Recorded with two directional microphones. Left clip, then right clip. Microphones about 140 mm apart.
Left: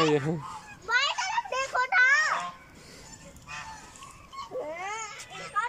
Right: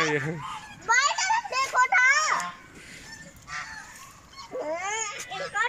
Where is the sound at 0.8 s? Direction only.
5° right (ahead or behind).